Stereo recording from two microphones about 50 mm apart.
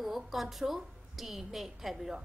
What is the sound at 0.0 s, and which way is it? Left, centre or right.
A woman's voice, centre.